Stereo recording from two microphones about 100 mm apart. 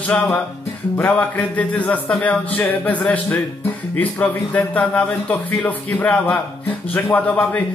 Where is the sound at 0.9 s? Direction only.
15° left (ahead or behind).